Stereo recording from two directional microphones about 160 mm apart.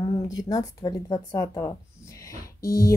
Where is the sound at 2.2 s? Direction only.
20° left (ahead or behind).